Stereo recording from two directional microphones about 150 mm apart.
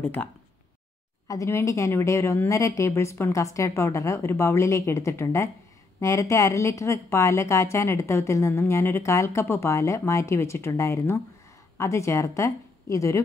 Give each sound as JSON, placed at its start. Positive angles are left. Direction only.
{"t": 0.0, "sound": "speech", "side_deg": 10}
{"t": 1.2, "sound": "a woman's voice", "side_deg": 20}